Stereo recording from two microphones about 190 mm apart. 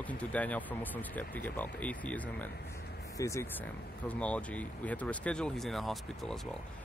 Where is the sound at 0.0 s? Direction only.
5° left (ahead or behind).